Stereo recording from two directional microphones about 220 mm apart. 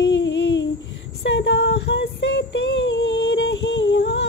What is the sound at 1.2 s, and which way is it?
Child singing, 50° left (ahead or behind).